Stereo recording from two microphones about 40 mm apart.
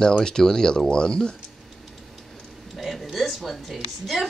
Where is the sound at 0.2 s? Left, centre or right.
Centre.